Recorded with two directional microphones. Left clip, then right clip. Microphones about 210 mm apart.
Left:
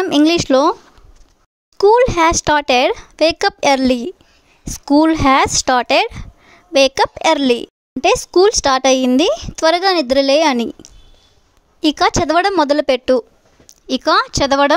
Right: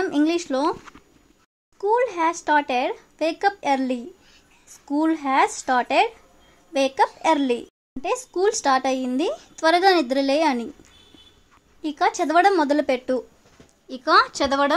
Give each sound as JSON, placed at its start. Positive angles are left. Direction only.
{"t": 0.0, "sound": "speech", "side_deg": 50}
{"t": 1.8, "sound": "speech", "side_deg": 45}